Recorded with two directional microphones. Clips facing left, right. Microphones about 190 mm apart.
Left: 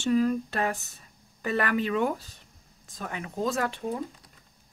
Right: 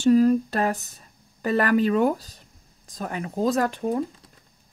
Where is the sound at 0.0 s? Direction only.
35° right (ahead or behind).